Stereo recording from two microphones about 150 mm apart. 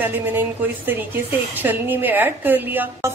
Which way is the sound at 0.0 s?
15° right (ahead or behind).